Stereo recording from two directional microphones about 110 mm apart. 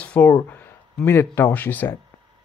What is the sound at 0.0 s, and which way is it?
Speech, 10° left (ahead or behind).